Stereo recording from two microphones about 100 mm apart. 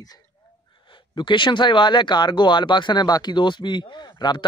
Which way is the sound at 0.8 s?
55° left (ahead or behind).